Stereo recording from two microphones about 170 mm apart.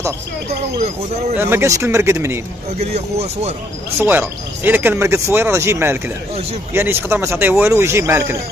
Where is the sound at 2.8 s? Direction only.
40° right (ahead or behind).